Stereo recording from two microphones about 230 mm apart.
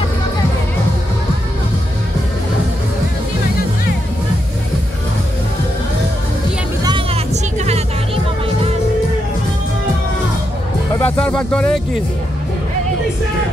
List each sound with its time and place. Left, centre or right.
7.5 s music: right
11.0 s speech: centre